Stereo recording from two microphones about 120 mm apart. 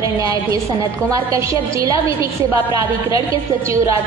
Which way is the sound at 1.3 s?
25° right (ahead or behind).